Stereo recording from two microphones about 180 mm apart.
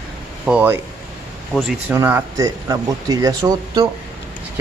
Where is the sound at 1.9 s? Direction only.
10° right (ahead or behind).